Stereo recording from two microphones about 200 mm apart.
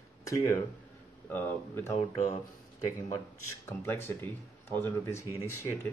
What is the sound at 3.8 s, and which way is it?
Speech, 10° left (ahead or behind).